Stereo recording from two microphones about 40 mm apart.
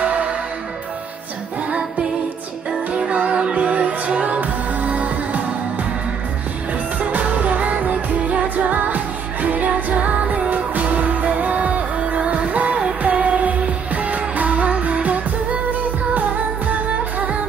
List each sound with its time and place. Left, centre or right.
0.0 s music: right
2.9 s music: right
7.0 s music of asia: right
9.9 s music: right